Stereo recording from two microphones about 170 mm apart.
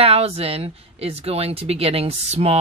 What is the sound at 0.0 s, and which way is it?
Speech, 35° right (ahead or behind).